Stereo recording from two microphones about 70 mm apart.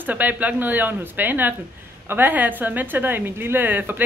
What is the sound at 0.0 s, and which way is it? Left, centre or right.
A woman's voice, right.